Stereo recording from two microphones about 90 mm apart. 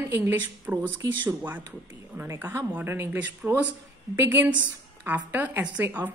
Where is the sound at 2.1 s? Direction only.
25° right (ahead or behind).